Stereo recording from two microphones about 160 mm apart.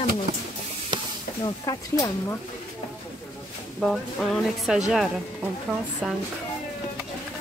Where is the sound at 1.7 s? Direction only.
20° left (ahead or behind).